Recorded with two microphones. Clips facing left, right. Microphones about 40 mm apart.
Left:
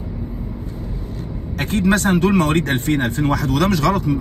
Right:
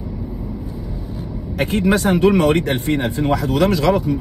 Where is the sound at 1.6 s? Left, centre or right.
Right.